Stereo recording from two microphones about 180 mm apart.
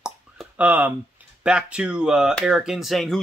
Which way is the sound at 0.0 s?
5° right (ahead or behind).